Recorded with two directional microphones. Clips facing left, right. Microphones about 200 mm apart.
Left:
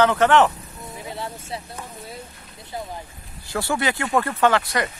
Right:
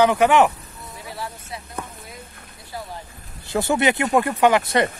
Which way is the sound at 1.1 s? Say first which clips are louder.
Left 2 dB; 25° left (ahead or behind).